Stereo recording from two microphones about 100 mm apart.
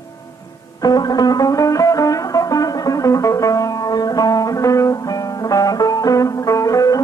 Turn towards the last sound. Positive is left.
turn(degrees=35)  # may be behind; listen again after turning